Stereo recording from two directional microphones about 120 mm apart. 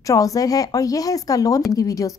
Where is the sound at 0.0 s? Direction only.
30° left (ahead or behind).